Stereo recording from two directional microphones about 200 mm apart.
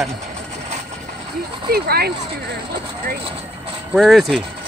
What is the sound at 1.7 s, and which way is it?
Speech, 50° right (ahead or behind).